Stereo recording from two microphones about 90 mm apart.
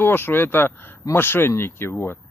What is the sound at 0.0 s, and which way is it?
Speech, 25° left (ahead or behind).